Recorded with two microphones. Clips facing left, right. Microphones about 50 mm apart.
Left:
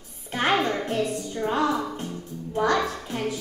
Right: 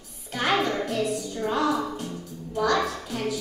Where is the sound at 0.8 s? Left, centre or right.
Left.